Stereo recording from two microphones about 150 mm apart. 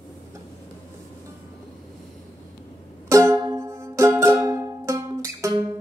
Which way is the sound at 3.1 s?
20° right (ahead or behind).